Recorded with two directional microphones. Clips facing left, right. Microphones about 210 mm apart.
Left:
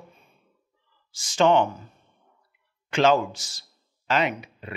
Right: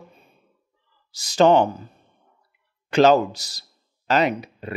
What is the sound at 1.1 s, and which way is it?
Speech, 35° right (ahead or behind).